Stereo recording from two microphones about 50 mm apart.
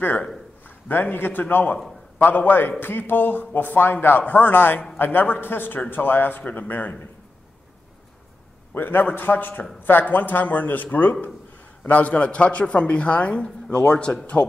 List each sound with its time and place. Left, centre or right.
0.7 s a man's voice: left
8.7 s a man's voice: left